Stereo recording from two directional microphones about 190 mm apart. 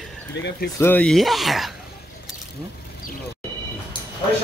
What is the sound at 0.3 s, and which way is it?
Speech, 65° left (ahead or behind).